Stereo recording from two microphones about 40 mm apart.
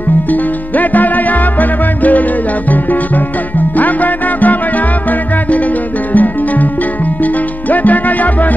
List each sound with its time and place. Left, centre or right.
0.3 s music: left
3.7 s music: left
6.1 s music: left
7.7 s music: left